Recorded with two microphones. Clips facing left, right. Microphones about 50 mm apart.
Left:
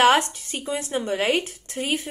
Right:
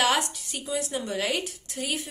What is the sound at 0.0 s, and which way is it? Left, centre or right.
A woman's voice, left.